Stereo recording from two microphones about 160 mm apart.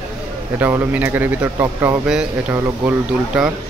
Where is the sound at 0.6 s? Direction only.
10° right (ahead or behind).